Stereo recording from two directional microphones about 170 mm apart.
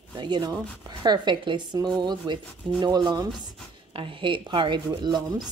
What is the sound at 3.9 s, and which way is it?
A woman's voice, 30° right (ahead or behind).